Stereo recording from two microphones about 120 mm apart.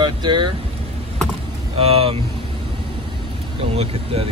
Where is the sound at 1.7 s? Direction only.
55° right (ahead or behind).